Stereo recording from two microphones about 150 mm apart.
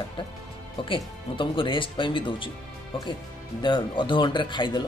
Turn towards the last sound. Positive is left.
turn(degrees=30)  # may be behind; listen again after turning